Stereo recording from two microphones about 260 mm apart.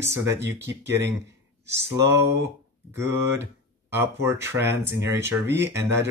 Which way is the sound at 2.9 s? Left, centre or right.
Centre.